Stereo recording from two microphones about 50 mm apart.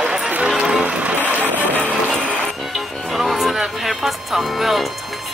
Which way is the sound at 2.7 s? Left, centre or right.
Centre.